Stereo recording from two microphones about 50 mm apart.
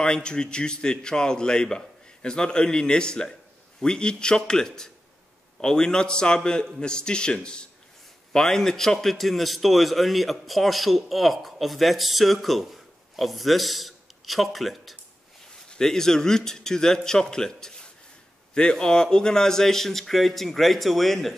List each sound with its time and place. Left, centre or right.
0.0 s a man's voice: centre